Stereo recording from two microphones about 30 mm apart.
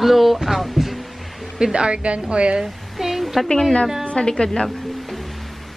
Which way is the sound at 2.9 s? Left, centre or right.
Centre.